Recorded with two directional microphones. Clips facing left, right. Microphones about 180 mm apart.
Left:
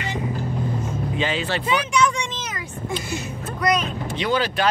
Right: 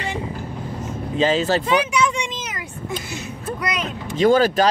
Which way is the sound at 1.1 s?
40° right (ahead or behind).